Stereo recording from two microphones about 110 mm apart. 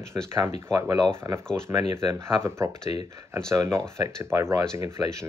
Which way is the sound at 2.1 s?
25° right (ahead or behind).